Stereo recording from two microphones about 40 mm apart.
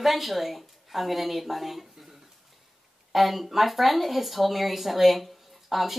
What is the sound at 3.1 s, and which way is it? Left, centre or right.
A woman's voice, centre.